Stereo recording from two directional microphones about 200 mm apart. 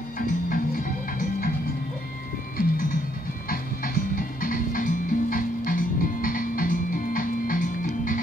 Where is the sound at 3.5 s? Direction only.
45° left (ahead or behind).